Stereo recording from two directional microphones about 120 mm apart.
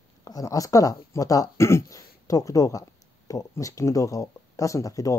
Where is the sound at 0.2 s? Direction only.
30° left (ahead or behind).